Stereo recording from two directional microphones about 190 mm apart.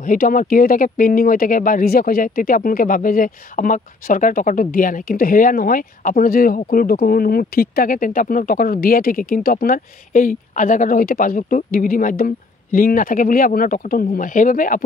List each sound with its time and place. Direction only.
0.0 s speech: 45° left (ahead or behind)